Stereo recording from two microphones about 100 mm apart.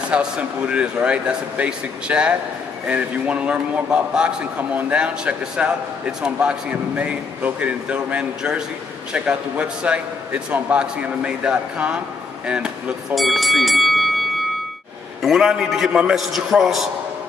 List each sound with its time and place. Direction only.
0.1 s a man's voice: 10° right (ahead or behind)
15.2 s a man's voice: centre (ahead or behind)